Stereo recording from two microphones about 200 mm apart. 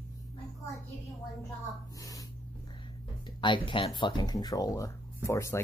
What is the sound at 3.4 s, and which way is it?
Speech, 25° left (ahead or behind).